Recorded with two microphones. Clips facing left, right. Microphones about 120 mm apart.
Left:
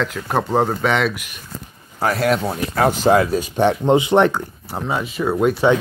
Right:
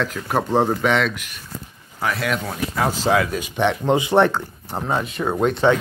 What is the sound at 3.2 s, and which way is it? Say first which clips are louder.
Speech: left 4 dB; 35° left (ahead or behind).